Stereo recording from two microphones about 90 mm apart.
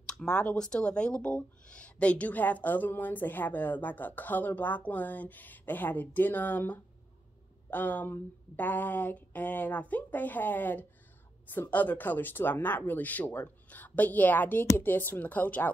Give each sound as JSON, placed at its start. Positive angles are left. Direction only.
{"t": 0.0, "sound": "speech", "side_deg": 10}